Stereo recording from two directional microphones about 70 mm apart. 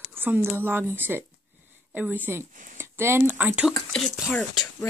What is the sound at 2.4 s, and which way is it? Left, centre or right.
Speech, right.